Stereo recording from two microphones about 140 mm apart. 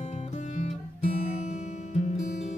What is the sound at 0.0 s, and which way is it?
Music, 55° left (ahead or behind).